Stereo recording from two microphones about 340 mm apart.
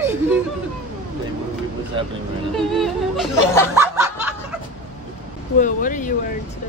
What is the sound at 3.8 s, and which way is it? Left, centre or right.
Snicker, centre.